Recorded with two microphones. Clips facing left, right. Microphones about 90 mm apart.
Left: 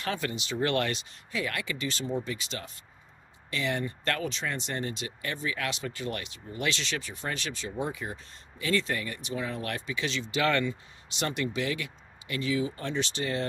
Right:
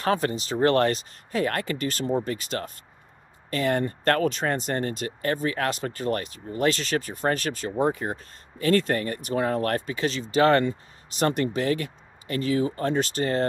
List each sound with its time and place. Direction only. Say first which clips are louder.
0.0 s speech: right 8 dB; 40° right (ahead or behind)